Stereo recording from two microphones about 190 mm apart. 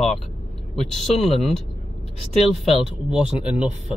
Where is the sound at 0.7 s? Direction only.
Centre (ahead or behind).